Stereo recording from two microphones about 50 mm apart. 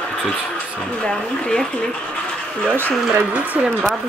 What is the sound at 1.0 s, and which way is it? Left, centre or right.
Speech, centre.